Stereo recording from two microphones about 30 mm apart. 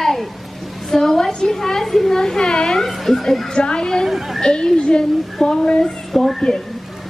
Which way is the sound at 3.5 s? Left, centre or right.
Left.